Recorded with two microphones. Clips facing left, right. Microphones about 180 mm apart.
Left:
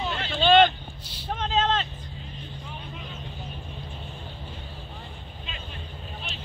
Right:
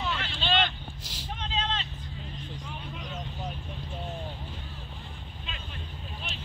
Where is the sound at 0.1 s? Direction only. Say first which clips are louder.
Left 13 dB; 50° left (ahead or behind).